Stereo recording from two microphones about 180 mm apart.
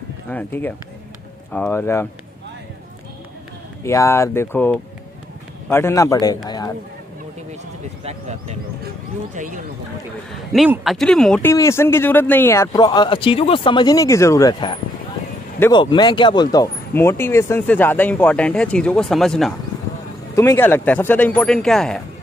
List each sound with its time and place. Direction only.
0.3 s speech: 10° left (ahead or behind)
3.8 s speech: 15° left (ahead or behind)
8.0 s speech: 35° right (ahead or behind)
10.5 s speech: centre (ahead or behind)
11.5 s speech: 15° left (ahead or behind)
20.3 s speech: 15° left (ahead or behind)